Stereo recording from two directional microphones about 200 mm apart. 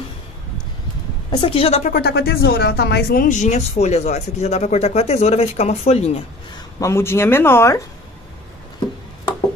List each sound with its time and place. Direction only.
1.3 s speech: 30° left (ahead or behind)
2.0 s speech: 50° left (ahead or behind); by 6.2 s 30° left (ahead or behind)
6.5 s speech: 15° left (ahead or behind)